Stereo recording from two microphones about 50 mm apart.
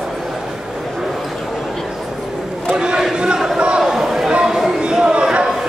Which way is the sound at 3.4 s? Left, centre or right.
Centre.